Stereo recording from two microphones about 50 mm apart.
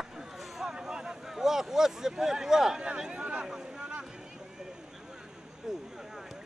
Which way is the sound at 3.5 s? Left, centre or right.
Centre.